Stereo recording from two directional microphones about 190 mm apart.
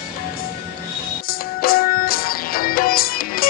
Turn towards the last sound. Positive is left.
turn(degrees=50)  # may be behind; listen again after turning